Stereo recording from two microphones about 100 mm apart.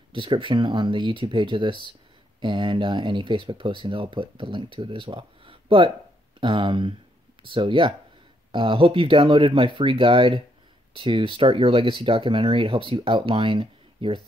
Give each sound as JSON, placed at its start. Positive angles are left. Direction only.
{"t": 0.1, "sound": "speech", "side_deg": -55}